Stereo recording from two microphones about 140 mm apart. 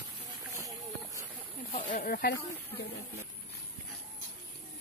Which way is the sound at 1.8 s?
85° left.